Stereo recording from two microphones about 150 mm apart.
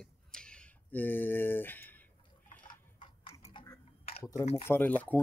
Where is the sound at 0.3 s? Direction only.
5° left (ahead or behind).